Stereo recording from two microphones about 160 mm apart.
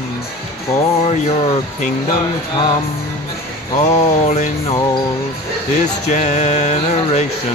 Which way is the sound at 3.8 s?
45° left (ahead or behind).